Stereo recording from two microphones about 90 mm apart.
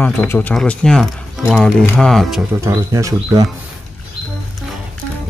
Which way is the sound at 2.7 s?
35° right (ahead or behind).